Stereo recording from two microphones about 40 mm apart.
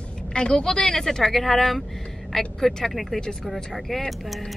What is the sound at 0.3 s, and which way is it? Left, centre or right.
Speech, left.